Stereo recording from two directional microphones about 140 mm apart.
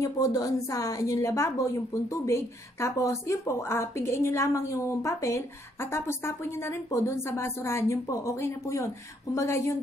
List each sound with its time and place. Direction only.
0.0 s a woman's voice: 25° left (ahead or behind)